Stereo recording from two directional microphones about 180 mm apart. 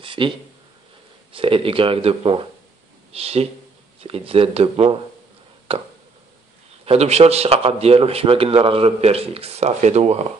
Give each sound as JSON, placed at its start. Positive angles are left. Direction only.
{"t": 0.0, "sound": "speech", "side_deg": -25}
{"t": 1.3, "sound": "a man's voice", "side_deg": -30}